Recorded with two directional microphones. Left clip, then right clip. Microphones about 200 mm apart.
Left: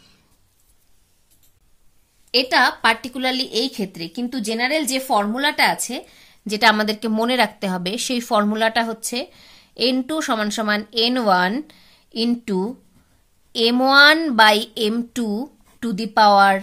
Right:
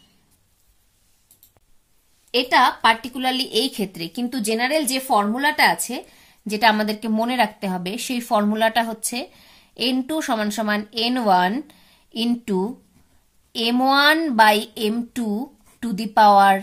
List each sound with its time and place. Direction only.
2.3 s a woman's voice: 20° left (ahead or behind)